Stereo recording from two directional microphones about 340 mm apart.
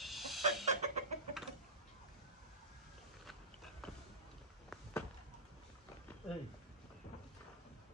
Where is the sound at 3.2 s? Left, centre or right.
Centre.